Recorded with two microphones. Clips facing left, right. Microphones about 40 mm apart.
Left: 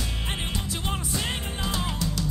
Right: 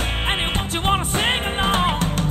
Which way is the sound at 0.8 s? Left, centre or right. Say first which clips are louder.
Right 13 dB; right.